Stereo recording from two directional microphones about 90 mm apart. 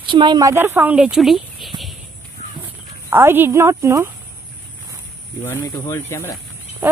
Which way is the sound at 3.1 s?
25° right (ahead or behind).